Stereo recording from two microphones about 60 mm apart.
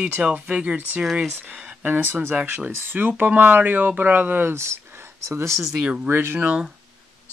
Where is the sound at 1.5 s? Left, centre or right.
Right.